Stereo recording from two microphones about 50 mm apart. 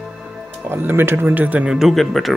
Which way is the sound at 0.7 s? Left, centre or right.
Right.